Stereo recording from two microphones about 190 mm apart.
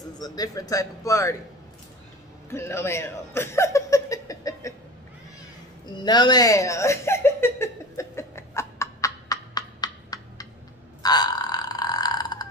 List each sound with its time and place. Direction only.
0.2 s speech: 20° left (ahead or behind)
2.5 s speech: 15° left (ahead or behind)
5.9 s a sound: 20° left (ahead or behind)
11.0 s burping: 20° left (ahead or behind)